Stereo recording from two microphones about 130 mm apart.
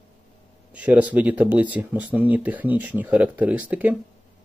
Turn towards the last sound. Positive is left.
turn(degrees=-10)  # may be behind; listen again after turning